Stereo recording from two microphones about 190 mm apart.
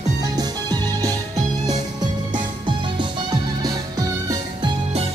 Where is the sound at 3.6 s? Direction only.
20° right (ahead or behind).